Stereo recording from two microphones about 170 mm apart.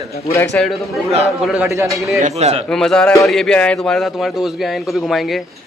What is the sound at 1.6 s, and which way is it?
Speech, 15° right (ahead or behind).